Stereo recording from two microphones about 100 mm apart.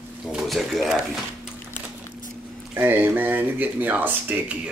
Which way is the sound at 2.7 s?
20° right (ahead or behind).